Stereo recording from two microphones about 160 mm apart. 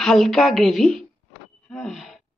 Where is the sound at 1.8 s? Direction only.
Centre (ahead or behind).